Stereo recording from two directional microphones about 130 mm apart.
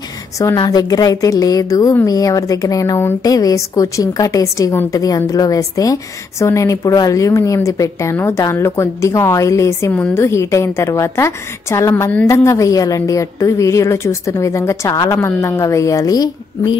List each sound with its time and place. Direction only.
0.6 s a woman's voice: 30° left (ahead or behind)